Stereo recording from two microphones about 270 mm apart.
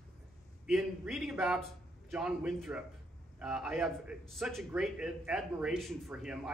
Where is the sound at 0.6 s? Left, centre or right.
Centre.